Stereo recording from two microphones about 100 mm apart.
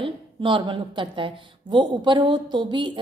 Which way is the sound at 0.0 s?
55° right (ahead or behind).